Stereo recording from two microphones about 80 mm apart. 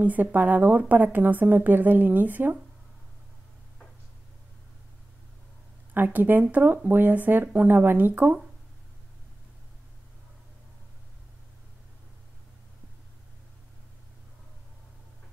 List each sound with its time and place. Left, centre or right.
0.0 s speech: right
5.9 s speech: right